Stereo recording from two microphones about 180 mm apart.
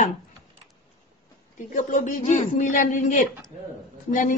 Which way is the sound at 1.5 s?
45° left (ahead or behind).